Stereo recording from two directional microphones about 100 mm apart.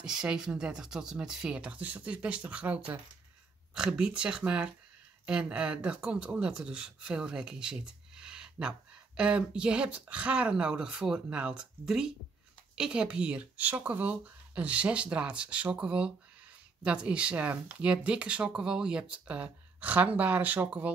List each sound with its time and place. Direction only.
0.0 s speech: 5° right (ahead or behind)